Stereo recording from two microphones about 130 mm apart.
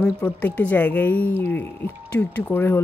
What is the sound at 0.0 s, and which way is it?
Speech, 10° left (ahead or behind).